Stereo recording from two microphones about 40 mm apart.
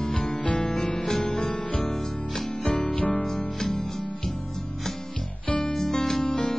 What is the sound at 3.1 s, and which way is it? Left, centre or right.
Music, left.